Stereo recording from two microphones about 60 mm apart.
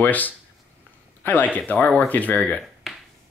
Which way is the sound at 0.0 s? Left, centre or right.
Left.